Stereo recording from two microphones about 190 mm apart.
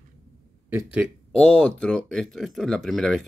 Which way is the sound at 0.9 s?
Centre (ahead or behind).